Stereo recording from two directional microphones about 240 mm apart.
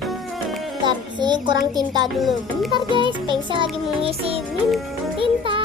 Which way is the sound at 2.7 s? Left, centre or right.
Centre.